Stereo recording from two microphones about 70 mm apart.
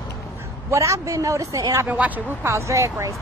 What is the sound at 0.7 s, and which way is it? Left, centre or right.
Speech, right.